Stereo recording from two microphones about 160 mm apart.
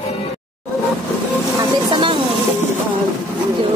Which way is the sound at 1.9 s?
30° right (ahead or behind).